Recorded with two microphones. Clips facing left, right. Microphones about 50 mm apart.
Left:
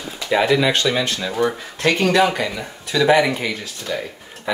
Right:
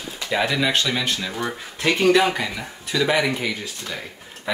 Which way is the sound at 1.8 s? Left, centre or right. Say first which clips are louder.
Left 1 dB; centre.